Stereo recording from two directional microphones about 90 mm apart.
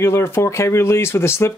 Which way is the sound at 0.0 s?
25° left (ahead or behind).